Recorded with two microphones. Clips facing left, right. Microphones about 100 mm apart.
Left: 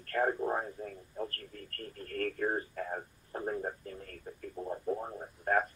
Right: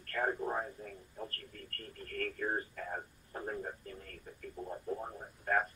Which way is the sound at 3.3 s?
40° left (ahead or behind).